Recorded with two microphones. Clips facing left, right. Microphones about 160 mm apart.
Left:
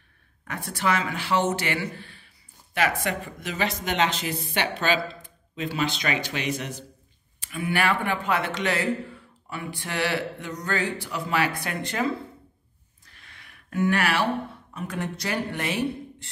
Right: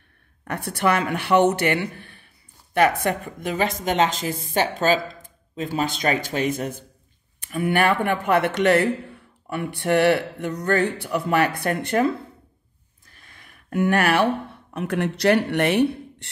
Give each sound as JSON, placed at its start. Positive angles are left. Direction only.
{"t": 0.5, "sound": "speech", "side_deg": -60}
{"t": 2.0, "sound": "a sound", "side_deg": -55}
{"t": 2.7, "sound": "speech", "side_deg": -50}
{"t": 4.3, "sound": "a woman's voice", "side_deg": -20}
{"t": 4.6, "sound": "speech", "side_deg": -40}
{"t": 13.2, "sound": "a sound", "side_deg": -45}
{"t": 14.7, "sound": "speech", "side_deg": -65}